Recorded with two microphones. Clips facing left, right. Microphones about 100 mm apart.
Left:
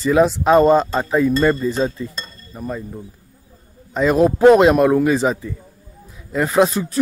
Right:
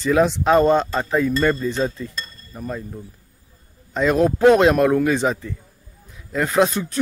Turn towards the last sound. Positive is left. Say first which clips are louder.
# left 2 dB
turn(degrees=0)  # may be behind; listen again after turning